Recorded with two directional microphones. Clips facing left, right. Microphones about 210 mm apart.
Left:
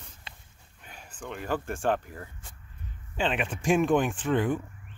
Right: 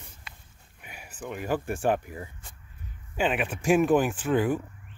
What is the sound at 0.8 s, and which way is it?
Speech, 10° right (ahead or behind).